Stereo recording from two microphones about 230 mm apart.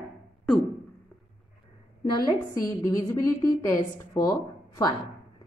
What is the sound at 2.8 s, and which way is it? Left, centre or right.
A woman's voice, centre.